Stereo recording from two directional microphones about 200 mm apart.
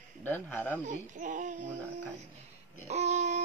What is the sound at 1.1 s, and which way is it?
Speech, 40° right (ahead or behind).